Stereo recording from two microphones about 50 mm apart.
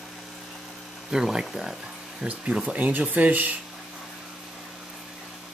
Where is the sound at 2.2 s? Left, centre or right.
Right.